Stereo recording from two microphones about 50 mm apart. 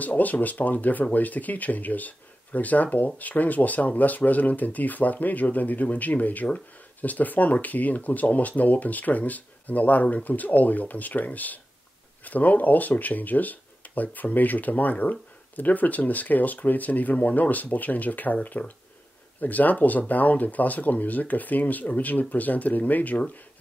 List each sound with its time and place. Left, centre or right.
0.0 s speech: left